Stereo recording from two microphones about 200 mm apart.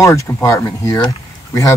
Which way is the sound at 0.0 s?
15° left (ahead or behind).